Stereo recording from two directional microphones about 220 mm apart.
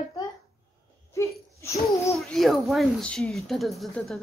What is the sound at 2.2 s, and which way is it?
Speech, centre (ahead or behind).